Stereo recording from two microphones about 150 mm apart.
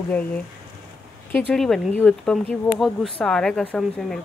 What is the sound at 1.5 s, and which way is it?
Speech, centre (ahead or behind).